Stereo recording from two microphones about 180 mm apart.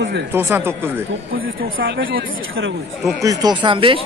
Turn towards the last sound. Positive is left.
turn(degrees=-30)  # may be behind; listen again after turning